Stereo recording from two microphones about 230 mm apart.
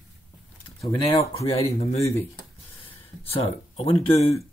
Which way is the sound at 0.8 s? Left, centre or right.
Centre.